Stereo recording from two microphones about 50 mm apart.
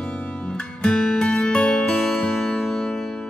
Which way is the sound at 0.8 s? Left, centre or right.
Centre.